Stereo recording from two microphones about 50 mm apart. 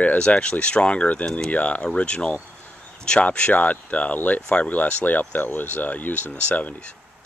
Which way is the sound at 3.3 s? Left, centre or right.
Left.